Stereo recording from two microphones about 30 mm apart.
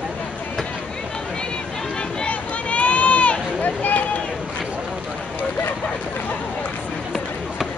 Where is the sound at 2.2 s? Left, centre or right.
Left.